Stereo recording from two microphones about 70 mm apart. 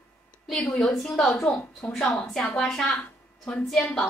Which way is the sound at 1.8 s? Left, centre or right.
Centre.